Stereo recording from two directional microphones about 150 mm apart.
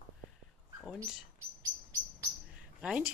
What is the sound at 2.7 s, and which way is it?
Speech, 10° right (ahead or behind).